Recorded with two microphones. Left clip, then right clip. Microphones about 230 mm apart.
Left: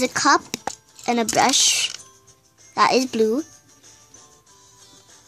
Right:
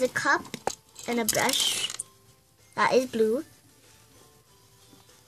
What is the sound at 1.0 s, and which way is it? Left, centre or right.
Speech, left.